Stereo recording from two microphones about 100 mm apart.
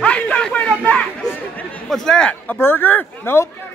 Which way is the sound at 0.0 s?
10° left (ahead or behind).